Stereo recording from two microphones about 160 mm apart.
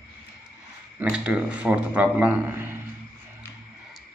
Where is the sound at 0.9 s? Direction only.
5° right (ahead or behind).